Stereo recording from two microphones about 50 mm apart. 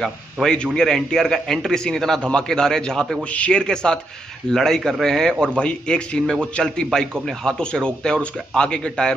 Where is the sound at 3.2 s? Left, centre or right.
Left; by 5.5 s centre.